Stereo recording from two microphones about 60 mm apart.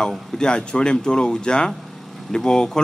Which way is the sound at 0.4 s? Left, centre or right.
Centre.